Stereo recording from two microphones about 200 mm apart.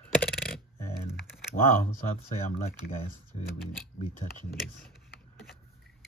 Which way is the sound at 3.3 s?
30° left (ahead or behind).